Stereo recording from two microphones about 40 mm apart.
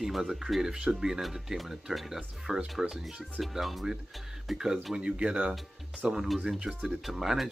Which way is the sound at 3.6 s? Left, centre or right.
Centre.